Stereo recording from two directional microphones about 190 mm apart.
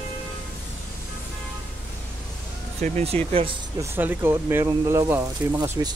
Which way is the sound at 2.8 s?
35° right (ahead or behind).